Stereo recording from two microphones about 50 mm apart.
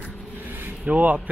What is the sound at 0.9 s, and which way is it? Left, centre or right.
Mantra, right.